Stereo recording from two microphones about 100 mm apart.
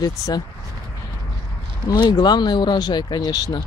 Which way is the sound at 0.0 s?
40° left (ahead or behind).